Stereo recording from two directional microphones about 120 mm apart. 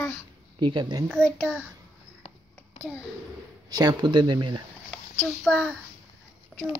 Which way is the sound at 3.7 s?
35° right (ahead or behind).